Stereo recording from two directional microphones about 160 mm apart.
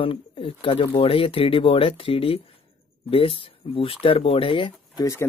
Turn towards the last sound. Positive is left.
turn(degrees=20)  # may be behind; listen again after turning